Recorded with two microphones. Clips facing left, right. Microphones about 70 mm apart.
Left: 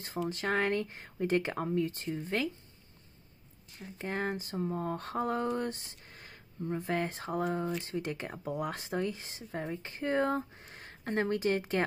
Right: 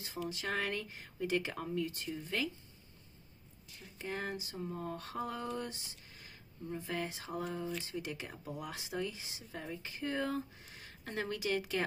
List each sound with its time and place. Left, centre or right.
0.3 s speech: left
3.7 s speech: left